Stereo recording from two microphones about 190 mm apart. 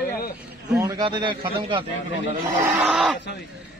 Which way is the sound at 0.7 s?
20° right (ahead or behind).